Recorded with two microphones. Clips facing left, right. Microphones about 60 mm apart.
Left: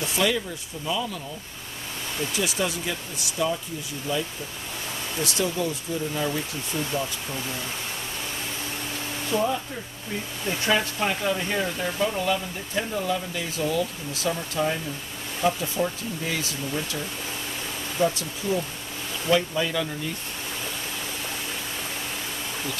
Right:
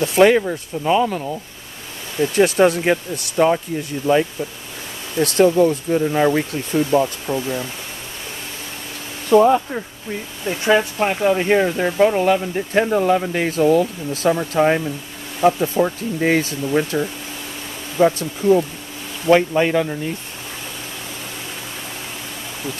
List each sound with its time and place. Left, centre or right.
0.0 s speech: right
2.3 s speech: right
5.2 s speech: right
9.3 s speech: right
10.4 s speech: centre
11.0 s speech: right